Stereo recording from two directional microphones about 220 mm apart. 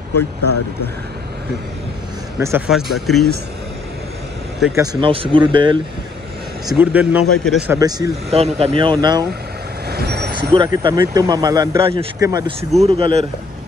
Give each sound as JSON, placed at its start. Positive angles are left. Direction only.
{"t": 0.1, "sound": "speech", "side_deg": 90}
{"t": 2.3, "sound": "speech", "side_deg": -10}
{"t": 4.7, "sound": "speech", "side_deg": -25}
{"t": 6.7, "sound": "speech", "side_deg": -10}
{"t": 8.3, "sound": "speech", "side_deg": -30}
{"t": 9.8, "sound": "vehicle", "side_deg": -45}
{"t": 10.8, "sound": "speech", "side_deg": -15}